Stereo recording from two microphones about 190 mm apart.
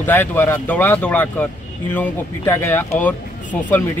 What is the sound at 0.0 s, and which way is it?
Speech, 10° left (ahead or behind).